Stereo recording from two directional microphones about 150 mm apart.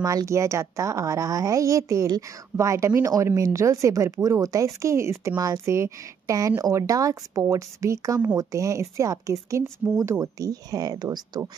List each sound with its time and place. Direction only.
0.0 s a woman's voice: 20° right (ahead or behind)